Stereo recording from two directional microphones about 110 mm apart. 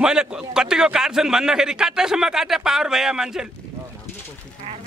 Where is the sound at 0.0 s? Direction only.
5° right (ahead or behind).